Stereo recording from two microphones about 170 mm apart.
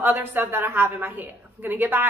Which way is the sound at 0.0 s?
10° right (ahead or behind).